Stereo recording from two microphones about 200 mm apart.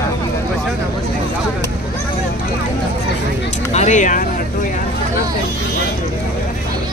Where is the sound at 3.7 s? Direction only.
35° left (ahead or behind).